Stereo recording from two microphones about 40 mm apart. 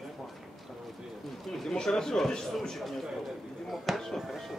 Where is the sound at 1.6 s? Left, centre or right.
Centre.